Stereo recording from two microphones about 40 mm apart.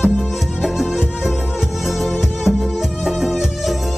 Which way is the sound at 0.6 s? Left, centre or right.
Centre.